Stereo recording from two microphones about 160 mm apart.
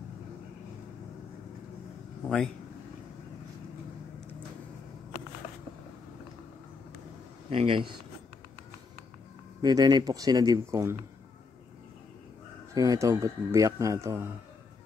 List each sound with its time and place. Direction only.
2.2 s speech: centre (ahead or behind)
7.4 s speech: 35° right (ahead or behind)
9.6 s speech: 25° right (ahead or behind)
12.7 s speech: 20° right (ahead or behind)